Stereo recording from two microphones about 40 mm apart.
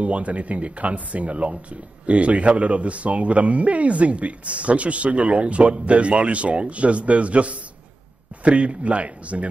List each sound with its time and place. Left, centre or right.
0.0 s speech: right